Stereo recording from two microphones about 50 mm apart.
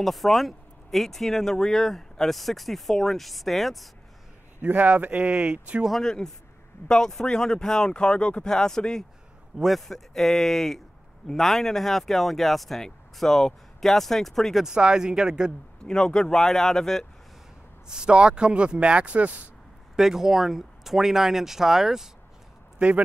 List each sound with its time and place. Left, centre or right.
0.0 s speech: centre
4.6 s speech: right
5.9 s speech: centre
14.6 s speech: centre
15.8 s speech: centre
17.8 s speech: centre
20.0 s speech: centre